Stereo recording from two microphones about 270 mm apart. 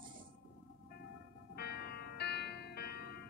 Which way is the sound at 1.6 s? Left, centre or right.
Left.